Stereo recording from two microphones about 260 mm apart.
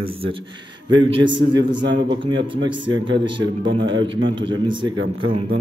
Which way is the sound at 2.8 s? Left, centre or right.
Right.